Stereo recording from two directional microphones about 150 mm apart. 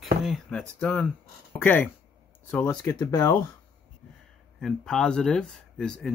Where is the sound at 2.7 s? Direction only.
20° left (ahead or behind).